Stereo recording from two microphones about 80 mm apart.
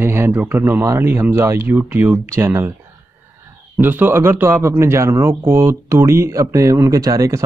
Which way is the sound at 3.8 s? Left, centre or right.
Right.